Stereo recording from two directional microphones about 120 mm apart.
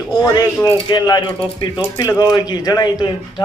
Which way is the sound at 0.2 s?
35° left (ahead or behind).